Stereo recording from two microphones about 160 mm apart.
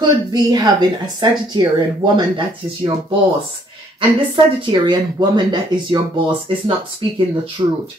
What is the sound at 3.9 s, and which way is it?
Speech, 30° right (ahead or behind).